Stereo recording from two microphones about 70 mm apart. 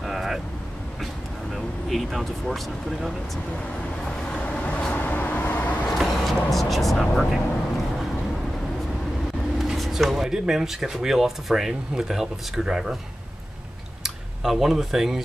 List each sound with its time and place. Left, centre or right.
0.0 s vehicle: centre
1.5 s speech: centre
4.3 s vehicle: centre
5.9 s vehicle: centre
9.6 s speech: centre
14.0 s speech: centre